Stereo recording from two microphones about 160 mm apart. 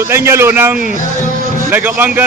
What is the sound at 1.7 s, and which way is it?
Speech, 10° right (ahead or behind).